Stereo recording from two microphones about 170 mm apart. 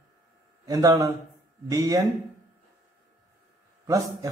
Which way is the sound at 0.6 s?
20° right (ahead or behind).